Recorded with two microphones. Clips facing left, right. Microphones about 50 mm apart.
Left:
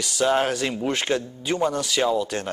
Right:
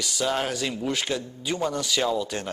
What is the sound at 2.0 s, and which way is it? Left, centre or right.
Speech, centre.